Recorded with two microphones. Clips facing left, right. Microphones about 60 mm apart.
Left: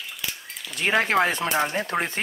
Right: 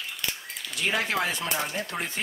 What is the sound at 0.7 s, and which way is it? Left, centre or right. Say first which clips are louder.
Speech: left 6 dB; left.